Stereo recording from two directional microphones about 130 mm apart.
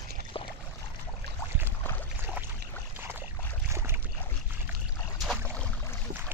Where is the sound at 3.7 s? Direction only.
20° right (ahead or behind).